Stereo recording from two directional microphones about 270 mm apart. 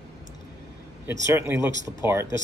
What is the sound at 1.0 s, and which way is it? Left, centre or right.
Speech, centre.